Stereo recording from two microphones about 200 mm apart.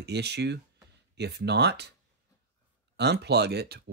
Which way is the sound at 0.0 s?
55° right (ahead or behind).